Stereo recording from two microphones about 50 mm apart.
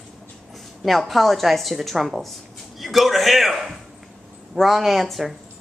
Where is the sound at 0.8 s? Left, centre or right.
Centre.